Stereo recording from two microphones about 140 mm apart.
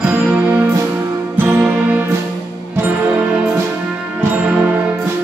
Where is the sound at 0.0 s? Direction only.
10° right (ahead or behind).